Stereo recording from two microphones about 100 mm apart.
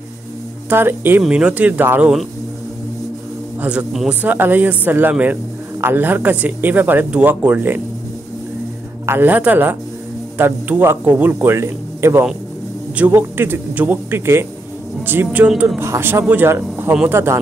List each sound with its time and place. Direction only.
0.7 s speech: 20° right (ahead or behind)
3.6 s speech: 5° right (ahead or behind)
4.1 s speech: 15° right (ahead or behind)
9.0 s speech: 20° right (ahead or behind)